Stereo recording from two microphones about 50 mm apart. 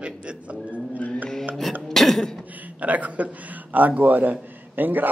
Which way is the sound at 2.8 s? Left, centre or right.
Right.